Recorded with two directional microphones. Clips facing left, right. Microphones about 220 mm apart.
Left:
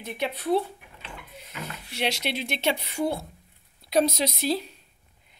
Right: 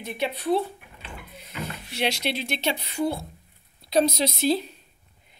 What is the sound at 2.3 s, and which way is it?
Speech, 15° left (ahead or behind).